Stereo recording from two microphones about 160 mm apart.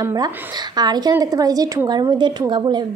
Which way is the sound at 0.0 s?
25° right (ahead or behind).